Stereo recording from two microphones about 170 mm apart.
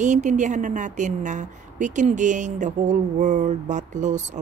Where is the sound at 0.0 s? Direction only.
45° right (ahead or behind).